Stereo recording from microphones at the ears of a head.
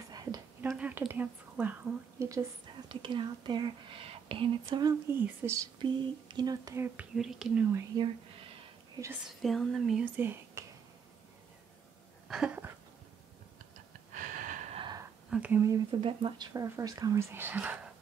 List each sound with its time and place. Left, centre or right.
0.2 s speech: right
12.3 s a sound: right
14.1 s speech: right